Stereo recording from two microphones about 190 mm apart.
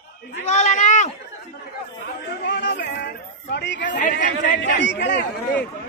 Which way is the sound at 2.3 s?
60° left (ahead or behind).